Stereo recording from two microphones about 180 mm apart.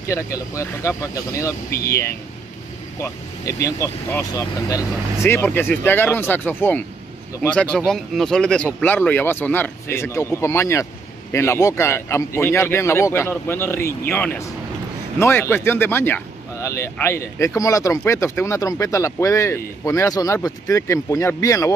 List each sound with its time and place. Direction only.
0.1 s speech: 15° left (ahead or behind)
3.0 s speech: 15° left (ahead or behind)